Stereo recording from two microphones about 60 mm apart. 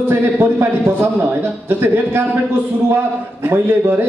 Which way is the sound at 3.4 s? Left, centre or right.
Right.